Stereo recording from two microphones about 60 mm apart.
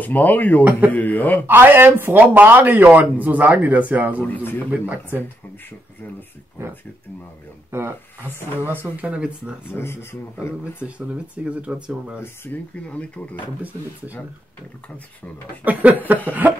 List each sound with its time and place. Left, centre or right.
0.0 s speech: left
0.7 s speech: right
0.9 s speech: left
1.5 s speech: right
4.3 s a man's voice: left
4.6 s speech: right
8.9 s speech: right
10.8 s speech: centre
12.8 s speech: left
15.6 s speech: right